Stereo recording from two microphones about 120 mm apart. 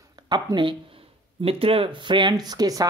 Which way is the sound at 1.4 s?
50° right (ahead or behind).